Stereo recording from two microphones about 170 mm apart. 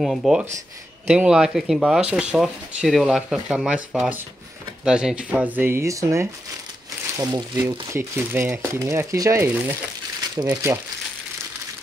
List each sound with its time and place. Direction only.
0.0 s speech: centre (ahead or behind)